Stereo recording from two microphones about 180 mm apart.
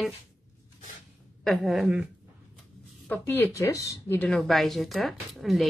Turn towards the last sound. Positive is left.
turn(degrees=0)  # may be behind; listen again after turning